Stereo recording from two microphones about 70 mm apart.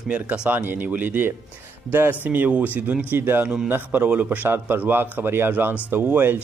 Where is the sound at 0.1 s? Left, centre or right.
Right.